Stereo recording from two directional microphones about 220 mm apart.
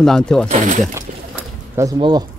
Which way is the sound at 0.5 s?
35° right (ahead or behind).